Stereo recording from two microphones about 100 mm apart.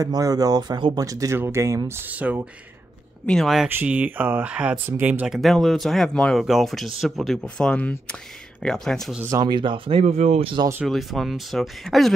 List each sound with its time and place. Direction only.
0.0 s speech: 40° right (ahead or behind)
1.0 s speech: 35° right (ahead or behind); by 2.4 s 15° right (ahead or behind)
3.3 s speech: centre (ahead or behind)
3.6 s speech: 15° right (ahead or behind)
5.3 s speech: centre (ahead or behind)
9.4 s speech: 50° right (ahead or behind); by 10.5 s 90° right
10.9 s speech: centre (ahead or behind)